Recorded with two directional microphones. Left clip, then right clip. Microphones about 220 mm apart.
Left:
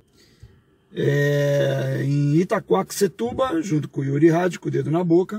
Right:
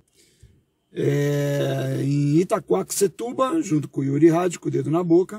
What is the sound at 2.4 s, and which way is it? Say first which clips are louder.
Speech: left 1 dB; 30° right (ahead or behind).